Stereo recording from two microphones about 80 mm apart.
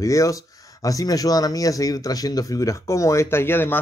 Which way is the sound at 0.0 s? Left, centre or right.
Left.